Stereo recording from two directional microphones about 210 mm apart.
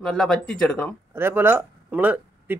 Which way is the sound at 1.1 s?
10° right (ahead or behind).